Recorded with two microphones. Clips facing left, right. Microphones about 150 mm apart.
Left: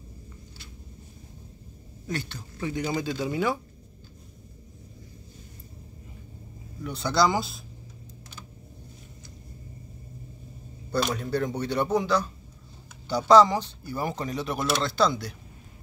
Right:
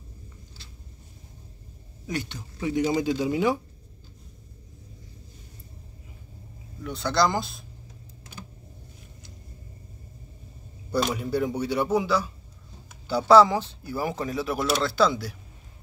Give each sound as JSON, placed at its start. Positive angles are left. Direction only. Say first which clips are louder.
{"t": 2.0, "sound": "speech", "louder": "right 1 dB", "side_deg": -15}
{"t": 6.8, "sound": "speech", "louder": "even", "side_deg": 0}
{"t": 10.9, "sound": "speech", "louder": "right 1 dB", "side_deg": -10}